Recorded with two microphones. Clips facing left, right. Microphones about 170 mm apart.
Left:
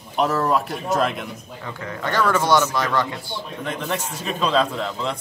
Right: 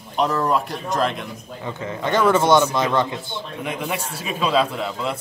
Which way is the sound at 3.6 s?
10° right (ahead or behind).